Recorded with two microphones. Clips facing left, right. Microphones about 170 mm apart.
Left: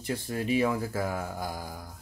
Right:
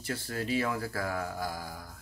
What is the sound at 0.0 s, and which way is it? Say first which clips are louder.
Speech: left 3 dB; 15° left (ahead or behind).